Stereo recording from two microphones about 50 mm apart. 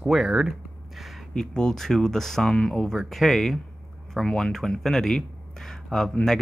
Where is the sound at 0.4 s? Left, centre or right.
Centre.